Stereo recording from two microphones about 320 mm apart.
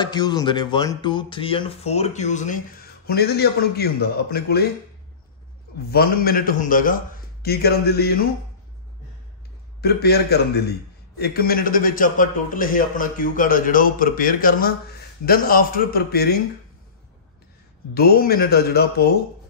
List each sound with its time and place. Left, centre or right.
0.0 s a man's voice: centre; by 4.6 s left
5.9 s a man's voice: left
9.8 s a man's voice: left
17.9 s a man's voice: left